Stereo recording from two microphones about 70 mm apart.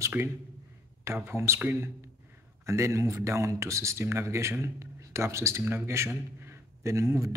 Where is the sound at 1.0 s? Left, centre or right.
Right.